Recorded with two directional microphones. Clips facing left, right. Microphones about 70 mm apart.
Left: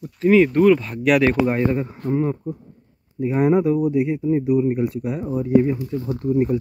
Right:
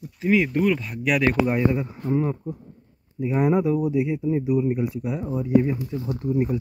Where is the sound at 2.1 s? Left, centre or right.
Centre.